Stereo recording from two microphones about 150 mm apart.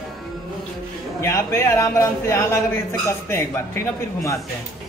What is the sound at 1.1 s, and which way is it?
A man's voice, 20° left (ahead or behind).